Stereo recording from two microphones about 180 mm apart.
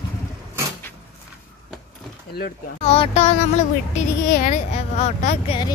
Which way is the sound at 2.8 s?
35° left (ahead or behind).